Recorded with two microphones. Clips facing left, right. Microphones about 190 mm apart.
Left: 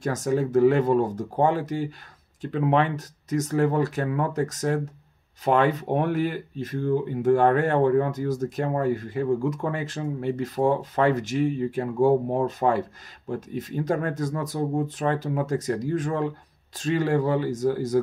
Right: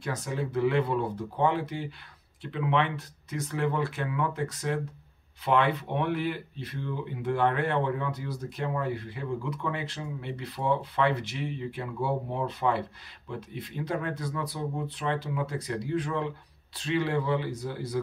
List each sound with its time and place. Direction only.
0.0 s speech: 45° left (ahead or behind)